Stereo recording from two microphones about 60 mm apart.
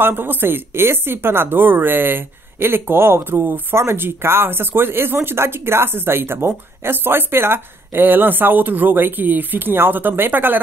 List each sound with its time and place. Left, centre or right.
0.0 s speech: right